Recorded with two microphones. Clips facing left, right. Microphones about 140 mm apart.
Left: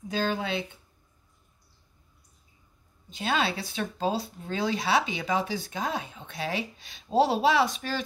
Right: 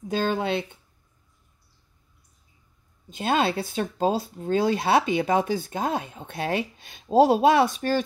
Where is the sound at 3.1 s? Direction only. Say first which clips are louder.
Right 5 dB; 50° right (ahead or behind).